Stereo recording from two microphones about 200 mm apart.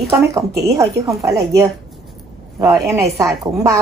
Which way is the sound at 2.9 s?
15° right (ahead or behind).